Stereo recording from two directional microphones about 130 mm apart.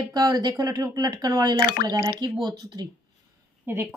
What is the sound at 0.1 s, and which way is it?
Speech, 30° right (ahead or behind).